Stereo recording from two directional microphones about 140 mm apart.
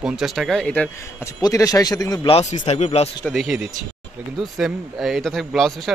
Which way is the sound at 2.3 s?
45° left (ahead or behind).